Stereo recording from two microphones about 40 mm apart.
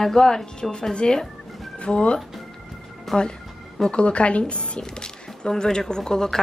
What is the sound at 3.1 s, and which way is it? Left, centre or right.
Speech, centre.